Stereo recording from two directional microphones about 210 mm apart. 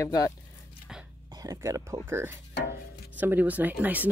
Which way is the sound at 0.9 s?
5° right (ahead or behind).